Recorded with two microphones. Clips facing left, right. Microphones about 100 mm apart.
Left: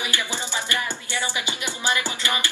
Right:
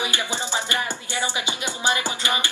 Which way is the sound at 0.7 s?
20° right (ahead or behind).